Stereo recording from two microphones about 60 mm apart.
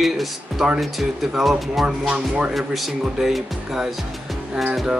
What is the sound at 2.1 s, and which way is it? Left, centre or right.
Speech, centre.